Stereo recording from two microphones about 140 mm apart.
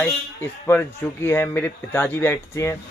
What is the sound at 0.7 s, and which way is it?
A man's voice, 15° left (ahead or behind).